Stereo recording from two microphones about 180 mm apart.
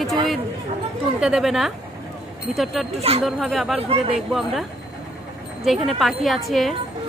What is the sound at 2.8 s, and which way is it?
Speech, centre (ahead or behind).